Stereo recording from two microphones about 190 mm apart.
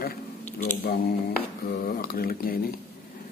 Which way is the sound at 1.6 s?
50° left (ahead or behind).